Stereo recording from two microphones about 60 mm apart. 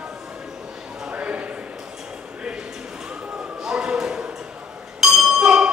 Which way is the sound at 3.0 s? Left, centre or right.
Centre.